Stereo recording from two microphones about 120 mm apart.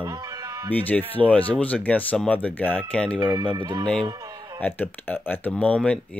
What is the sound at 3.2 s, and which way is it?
Speech, 35° right (ahead or behind).